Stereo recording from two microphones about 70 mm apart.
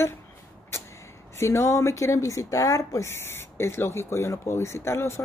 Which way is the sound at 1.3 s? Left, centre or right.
Left.